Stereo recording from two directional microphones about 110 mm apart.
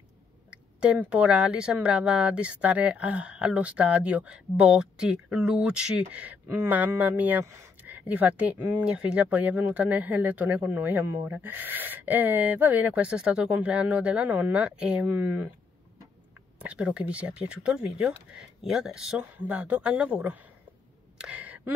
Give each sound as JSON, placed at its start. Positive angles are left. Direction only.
{"t": 0.5, "sound": "speech", "side_deg": -10}
{"t": 16.5, "sound": "speech", "side_deg": -10}
{"t": 19.3, "sound": "speech", "side_deg": -15}
{"t": 21.2, "sound": "a sound", "side_deg": -15}